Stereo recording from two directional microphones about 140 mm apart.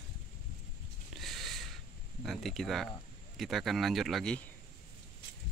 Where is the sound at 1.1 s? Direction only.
Centre (ahead or behind).